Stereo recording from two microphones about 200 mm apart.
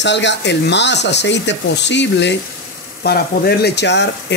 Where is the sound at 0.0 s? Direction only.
60° left (ahead or behind).